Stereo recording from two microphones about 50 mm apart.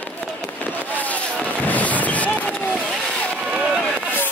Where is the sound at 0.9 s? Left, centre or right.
Left.